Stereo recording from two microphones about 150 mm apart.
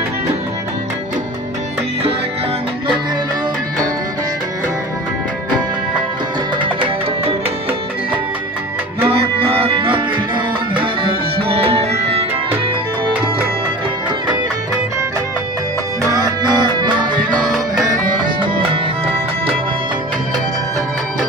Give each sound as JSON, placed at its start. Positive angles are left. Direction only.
{"t": 6.6, "sound": "music", "side_deg": -35}
{"t": 9.0, "sound": "music", "side_deg": -40}
{"t": 16.0, "sound": "music", "side_deg": -25}
{"t": 17.8, "sound": "music", "side_deg": -60}